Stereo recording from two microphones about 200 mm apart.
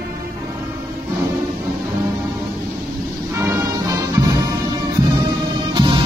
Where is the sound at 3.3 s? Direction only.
15° right (ahead or behind).